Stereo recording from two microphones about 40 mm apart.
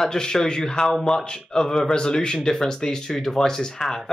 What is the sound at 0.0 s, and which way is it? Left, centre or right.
Speech, centre.